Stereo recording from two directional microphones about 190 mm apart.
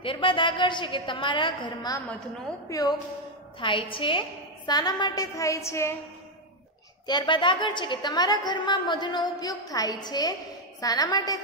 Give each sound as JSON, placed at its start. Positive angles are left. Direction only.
{"t": 0.0, "sound": "a woman's voice", "side_deg": 25}
{"t": 3.5, "sound": "a woman's voice", "side_deg": 25}
{"t": 7.1, "sound": "a woman's voice", "side_deg": 25}